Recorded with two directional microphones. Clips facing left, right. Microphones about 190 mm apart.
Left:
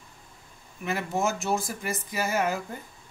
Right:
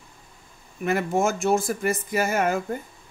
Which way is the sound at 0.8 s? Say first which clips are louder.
Right 5 dB; 50° right (ahead or behind).